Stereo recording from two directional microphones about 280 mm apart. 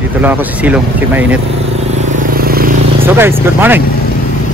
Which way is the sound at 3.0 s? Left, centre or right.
Centre.